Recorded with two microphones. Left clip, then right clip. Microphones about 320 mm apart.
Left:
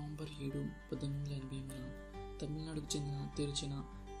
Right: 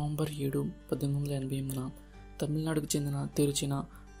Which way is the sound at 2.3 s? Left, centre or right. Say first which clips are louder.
Right 14 dB; right.